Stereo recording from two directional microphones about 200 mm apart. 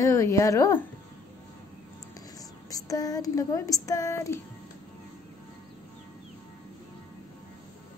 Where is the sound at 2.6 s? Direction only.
20° left (ahead or behind).